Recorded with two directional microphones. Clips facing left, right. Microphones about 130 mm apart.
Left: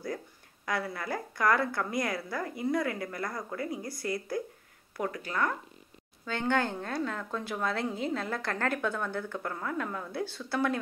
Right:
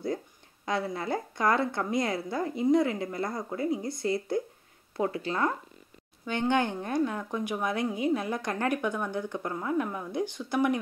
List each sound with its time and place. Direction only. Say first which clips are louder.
0.7 s a woman's voice: right 3 dB; 25° right (ahead or behind)